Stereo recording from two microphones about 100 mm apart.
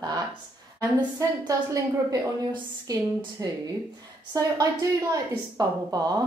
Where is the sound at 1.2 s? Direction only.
35° right (ahead or behind).